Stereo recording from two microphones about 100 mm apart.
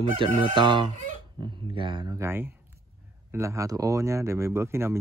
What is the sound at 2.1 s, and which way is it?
Speech, 25° right (ahead or behind).